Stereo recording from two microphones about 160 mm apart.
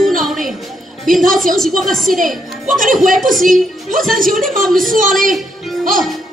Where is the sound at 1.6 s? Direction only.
Centre (ahead or behind).